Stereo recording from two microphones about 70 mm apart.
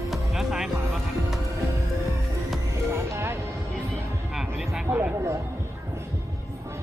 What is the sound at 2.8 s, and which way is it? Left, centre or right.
Music, right.